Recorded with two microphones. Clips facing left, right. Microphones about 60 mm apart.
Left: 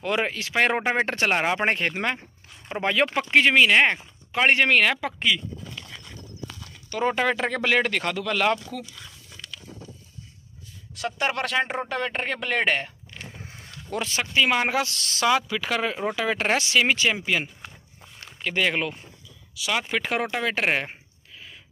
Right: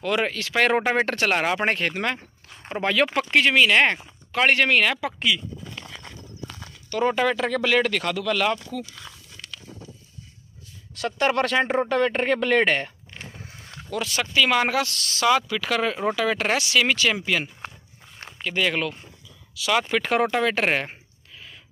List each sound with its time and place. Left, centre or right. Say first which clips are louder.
0.0 s speech: right 1 dB; centre
1.1 s speech: right 1 dB; left
4.6 s speech: even; left
5.8 s horse: right 2 dB; centre
6.0 s walk: right 1 dB; right
6.9 s speech: right 2 dB; left
11.0 s speech: right 4 dB; centre
13.1 s a sound: left 1 dB; right
13.8 s speech: right 1 dB; left
18.4 s speech: even; left
19.5 s speech: right 4 dB; centre